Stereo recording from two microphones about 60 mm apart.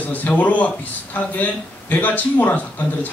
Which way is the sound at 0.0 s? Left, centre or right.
Left.